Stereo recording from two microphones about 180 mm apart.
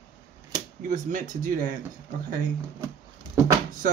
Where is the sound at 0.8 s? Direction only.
45° right (ahead or behind).